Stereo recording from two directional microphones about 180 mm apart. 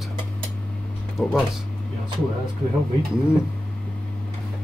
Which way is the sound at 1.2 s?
5° right (ahead or behind).